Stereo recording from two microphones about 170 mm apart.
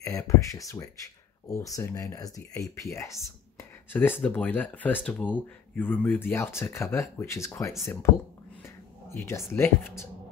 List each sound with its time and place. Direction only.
0.0 s speech: 20° left (ahead or behind)
9.1 s speech: 15° left (ahead or behind)